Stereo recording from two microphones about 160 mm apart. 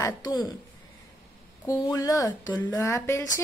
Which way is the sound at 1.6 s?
20° left (ahead or behind).